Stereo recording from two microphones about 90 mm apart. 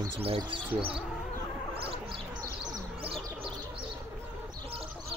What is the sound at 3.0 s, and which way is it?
Bird, 90° right.